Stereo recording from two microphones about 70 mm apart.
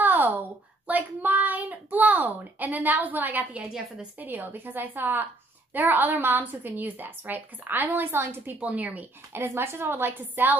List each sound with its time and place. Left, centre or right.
0.0 s a sound: right
0.8 s a child's voice: right
3.7 s a woman's voice: centre
4.2 s a woman's voice: right
8.5 s a woman's voice: right